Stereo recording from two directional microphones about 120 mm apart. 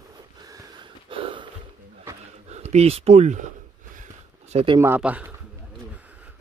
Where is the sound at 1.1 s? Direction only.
45° right (ahead or behind).